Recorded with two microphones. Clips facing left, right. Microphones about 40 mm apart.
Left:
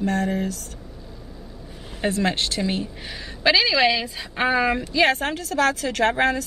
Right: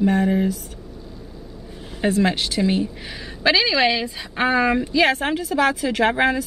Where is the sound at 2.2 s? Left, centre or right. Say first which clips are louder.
Right 3 dB; centre.